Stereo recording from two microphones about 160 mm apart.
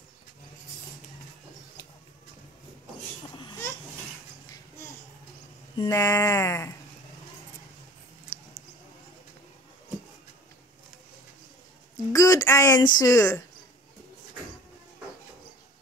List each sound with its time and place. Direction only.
5.8 s speech: 20° left (ahead or behind)
8.3 s a sound: 10° left (ahead or behind)
12.1 s speech: 20° left (ahead or behind)